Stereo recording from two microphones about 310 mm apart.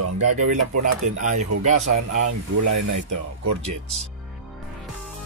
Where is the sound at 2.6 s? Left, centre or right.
Right.